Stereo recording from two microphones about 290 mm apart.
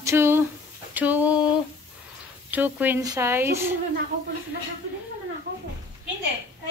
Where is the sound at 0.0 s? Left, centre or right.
Centre.